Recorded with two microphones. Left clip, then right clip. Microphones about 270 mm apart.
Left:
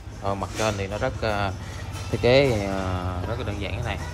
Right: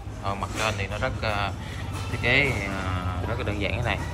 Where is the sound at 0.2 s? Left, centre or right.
Left.